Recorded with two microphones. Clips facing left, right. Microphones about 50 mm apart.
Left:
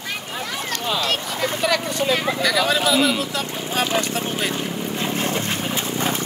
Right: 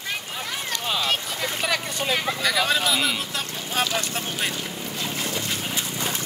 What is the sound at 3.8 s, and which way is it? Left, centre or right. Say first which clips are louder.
Speech: left 4 dB; left.